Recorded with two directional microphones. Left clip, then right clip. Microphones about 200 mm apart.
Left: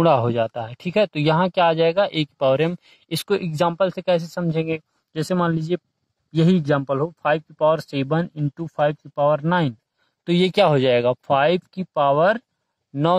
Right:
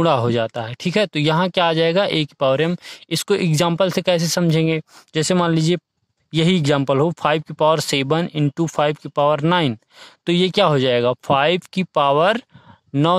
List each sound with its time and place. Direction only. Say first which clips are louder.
0.0 s speech: even; 25° right (ahead or behind)